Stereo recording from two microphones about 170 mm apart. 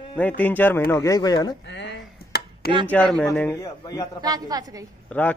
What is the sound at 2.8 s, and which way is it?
Speech, 10° left (ahead or behind).